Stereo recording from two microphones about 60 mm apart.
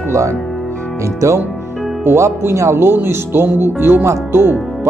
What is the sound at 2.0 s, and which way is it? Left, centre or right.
Speech, right.